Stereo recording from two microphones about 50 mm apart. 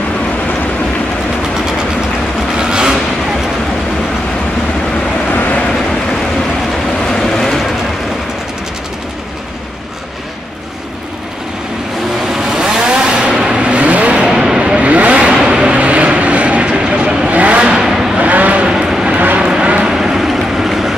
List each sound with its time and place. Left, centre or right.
2.5 s a sound: centre
5.3 s vehicle: left
7.2 s vehicle: centre
12.3 s vehicle: centre
13.6 s vehicle: right
14.3 s vehicle: centre
14.8 s vehicle: right
17.8 s vehicle: centre
18.1 s vehicle: right
18.7 s vehicle: centre
19.1 s vehicle: right
19.4 s vehicle: centre